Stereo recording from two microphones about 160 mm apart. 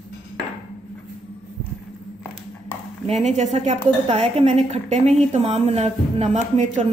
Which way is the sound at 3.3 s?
45° right (ahead or behind).